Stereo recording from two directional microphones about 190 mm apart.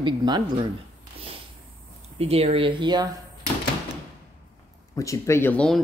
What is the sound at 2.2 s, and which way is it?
Speech, 30° right (ahead or behind).